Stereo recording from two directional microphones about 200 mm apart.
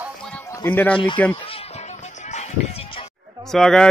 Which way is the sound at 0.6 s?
10° left (ahead or behind).